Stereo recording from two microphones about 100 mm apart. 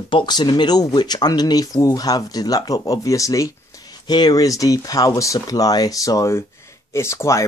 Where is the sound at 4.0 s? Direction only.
45° left (ahead or behind).